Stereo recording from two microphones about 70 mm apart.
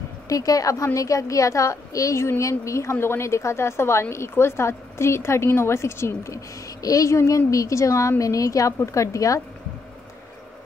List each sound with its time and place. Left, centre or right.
0.3 s a woman's voice: left